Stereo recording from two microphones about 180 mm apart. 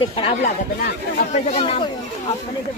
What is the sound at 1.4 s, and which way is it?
Speech, 35° left (ahead or behind).